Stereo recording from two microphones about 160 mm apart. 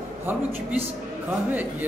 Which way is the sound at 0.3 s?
10° right (ahead or behind).